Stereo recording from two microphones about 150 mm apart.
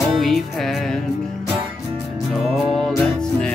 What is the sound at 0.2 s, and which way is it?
Music, centre (ahead or behind).